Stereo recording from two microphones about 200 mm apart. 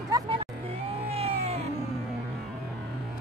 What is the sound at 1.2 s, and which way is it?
Music, 30° right (ahead or behind).